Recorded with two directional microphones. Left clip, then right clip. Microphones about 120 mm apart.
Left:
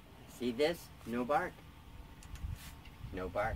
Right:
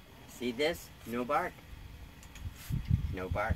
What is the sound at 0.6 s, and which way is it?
Speech, 65° left (ahead or behind).